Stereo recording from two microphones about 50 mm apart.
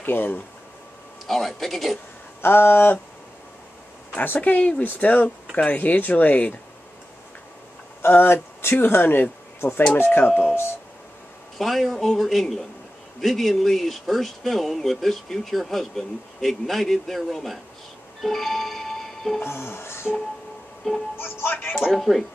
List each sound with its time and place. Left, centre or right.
0.0 s speech: left
1.2 s speech: centre
2.4 s speech: left
4.1 s speech: left
8.1 s speech: left
11.5 s speech: centre
18.2 s music: centre
19.4 s speech: left
20.9 s speech: centre
21.2 s speech: left
21.9 s speech: centre